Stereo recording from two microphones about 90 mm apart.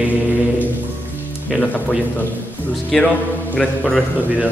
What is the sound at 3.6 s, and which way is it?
Speech, 10° left (ahead or behind).